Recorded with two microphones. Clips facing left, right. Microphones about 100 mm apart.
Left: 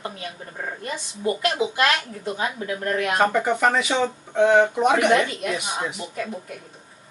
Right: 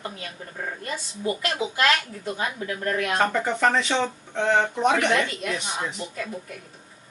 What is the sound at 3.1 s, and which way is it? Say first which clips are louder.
A woman's voice: left 5 dB; 5° left (ahead or behind).